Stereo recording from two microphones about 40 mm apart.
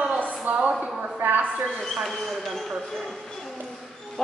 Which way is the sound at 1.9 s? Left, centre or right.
Centre.